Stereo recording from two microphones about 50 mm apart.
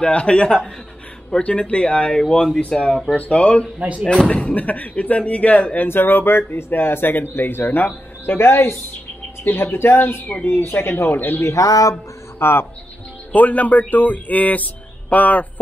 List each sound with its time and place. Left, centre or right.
0.0 s speech: left
3.2 s speech: left
4.6 s speech: left
5.9 s speech: left
10.4 s speech: left
11.4 s speech: left
12.4 s speech: left
13.3 s speech: left